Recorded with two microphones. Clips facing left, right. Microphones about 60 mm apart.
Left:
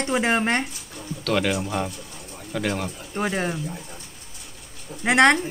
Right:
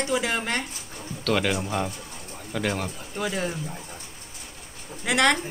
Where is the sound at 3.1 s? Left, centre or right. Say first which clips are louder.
Left 3 dB; left.